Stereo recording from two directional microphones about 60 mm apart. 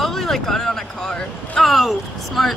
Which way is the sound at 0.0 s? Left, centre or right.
Centre.